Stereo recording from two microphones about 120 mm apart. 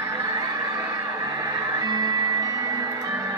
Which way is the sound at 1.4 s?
30° right (ahead or behind).